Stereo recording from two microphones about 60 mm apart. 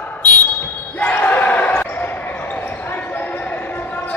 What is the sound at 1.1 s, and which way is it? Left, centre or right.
Basketball bounce, left.